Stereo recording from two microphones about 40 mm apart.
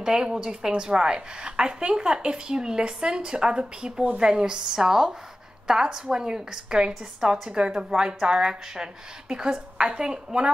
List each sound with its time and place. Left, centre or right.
0.0 s a woman's voice: centre